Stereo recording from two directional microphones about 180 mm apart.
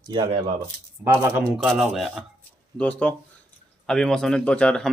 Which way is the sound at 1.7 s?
Centre (ahead or behind).